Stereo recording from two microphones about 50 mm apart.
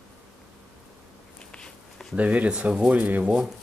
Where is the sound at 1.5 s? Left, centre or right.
Centre.